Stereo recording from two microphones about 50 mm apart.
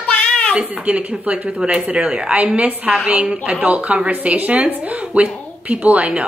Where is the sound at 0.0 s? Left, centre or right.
Left.